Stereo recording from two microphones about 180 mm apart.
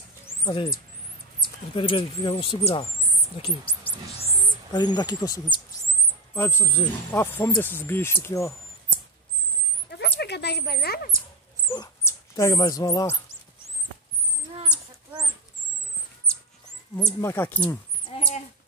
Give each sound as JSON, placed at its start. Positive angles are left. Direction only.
{"t": 0.5, "sound": "speech", "side_deg": 25}
{"t": 9.8, "sound": "dog", "side_deg": 65}
{"t": 11.7, "sound": "speech", "side_deg": 20}
{"t": 16.9, "sound": "speech", "side_deg": 15}
{"t": 18.1, "sound": "a sound", "side_deg": 35}